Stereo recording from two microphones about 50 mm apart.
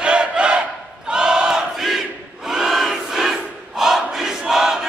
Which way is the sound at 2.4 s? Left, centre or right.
Centre.